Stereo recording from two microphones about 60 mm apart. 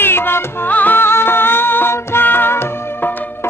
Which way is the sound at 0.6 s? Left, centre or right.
Left.